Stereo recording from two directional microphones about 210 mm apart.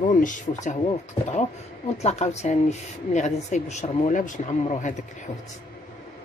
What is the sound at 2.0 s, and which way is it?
Speech, 30° left (ahead or behind).